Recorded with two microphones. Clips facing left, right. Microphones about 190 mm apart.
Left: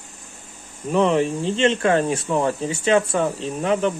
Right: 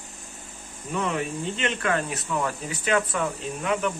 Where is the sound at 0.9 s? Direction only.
30° left (ahead or behind).